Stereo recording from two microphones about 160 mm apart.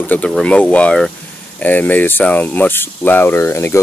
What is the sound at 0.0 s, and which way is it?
Speech, 10° left (ahead or behind).